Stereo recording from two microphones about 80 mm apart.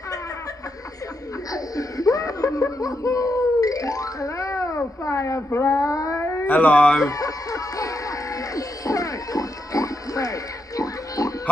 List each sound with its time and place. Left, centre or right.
1.5 s laughter: left
6.4 s speech: centre
7.0 s a sound: left